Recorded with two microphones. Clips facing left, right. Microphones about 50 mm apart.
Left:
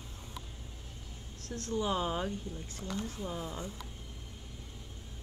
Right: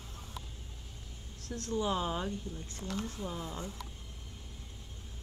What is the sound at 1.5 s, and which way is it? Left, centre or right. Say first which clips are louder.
Speech: even; left.